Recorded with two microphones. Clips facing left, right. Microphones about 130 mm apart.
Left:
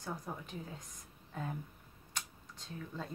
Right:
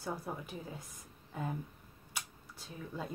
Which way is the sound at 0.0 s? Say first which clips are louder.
Right 3 dB; 5° right (ahead or behind).